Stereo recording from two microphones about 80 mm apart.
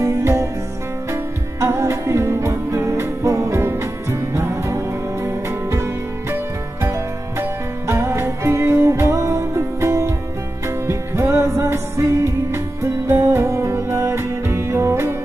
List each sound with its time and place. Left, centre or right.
0.0 s music: right